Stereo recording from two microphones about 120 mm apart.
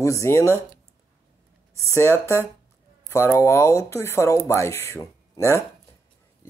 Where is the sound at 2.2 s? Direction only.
20° left (ahead or behind).